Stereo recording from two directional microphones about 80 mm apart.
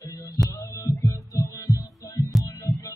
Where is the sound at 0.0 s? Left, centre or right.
Left.